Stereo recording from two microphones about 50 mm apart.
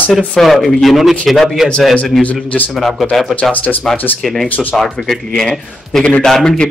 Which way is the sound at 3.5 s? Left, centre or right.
Left.